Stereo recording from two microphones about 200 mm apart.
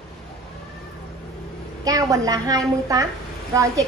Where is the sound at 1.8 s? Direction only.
15° right (ahead or behind).